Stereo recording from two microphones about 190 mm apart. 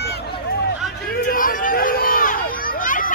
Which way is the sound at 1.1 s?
45° left (ahead or behind).